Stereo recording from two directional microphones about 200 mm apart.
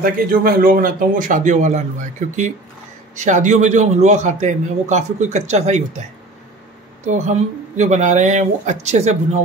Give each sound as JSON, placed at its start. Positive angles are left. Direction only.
{"t": 0.0, "sound": "a man's voice", "side_deg": -45}
{"t": 7.1, "sound": "a man's voice", "side_deg": -35}